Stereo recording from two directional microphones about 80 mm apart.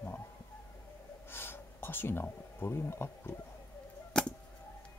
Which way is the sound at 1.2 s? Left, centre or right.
Left.